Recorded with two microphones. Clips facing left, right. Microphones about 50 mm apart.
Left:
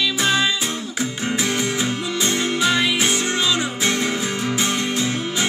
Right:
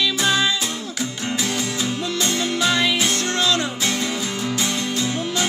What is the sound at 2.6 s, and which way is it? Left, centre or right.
Music, centre.